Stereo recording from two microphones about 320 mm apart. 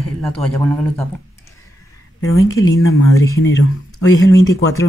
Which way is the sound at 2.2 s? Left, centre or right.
Left.